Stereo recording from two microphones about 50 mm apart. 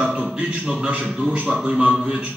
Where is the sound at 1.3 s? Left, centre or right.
Right.